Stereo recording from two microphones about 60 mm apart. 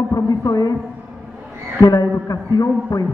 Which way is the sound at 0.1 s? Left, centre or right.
Left.